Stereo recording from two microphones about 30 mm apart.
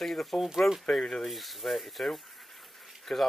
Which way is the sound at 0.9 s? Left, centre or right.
Centre.